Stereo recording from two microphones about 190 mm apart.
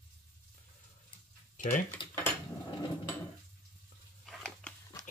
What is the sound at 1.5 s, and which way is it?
Typing, 45° left (ahead or behind).